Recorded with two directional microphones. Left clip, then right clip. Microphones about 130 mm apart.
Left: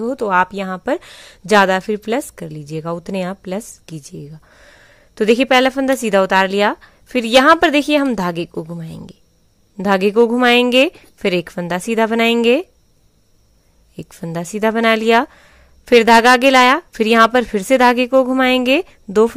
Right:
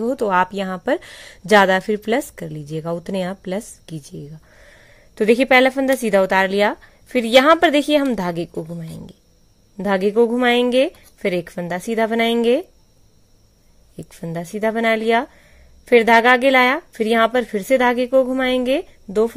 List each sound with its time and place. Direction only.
0.0 s a woman's voice: 15° left (ahead or behind)
13.9 s speech: 30° left (ahead or behind)